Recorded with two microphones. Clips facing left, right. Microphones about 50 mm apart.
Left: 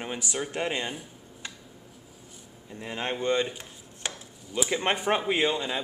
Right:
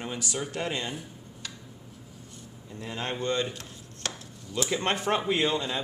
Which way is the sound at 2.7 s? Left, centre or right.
Centre.